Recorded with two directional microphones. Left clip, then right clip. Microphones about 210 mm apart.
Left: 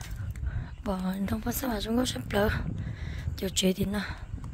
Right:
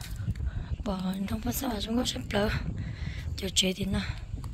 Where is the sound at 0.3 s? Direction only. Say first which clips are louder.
Right 1 dB; 30° left (ahead or behind).